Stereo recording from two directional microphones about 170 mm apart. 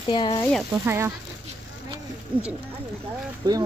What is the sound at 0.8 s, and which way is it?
Speech, 15° right (ahead or behind).